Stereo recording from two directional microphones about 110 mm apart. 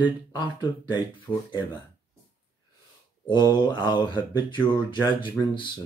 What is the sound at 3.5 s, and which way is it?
Speech, 40° left (ahead or behind).